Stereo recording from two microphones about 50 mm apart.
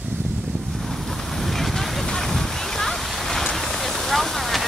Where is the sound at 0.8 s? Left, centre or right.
Centre.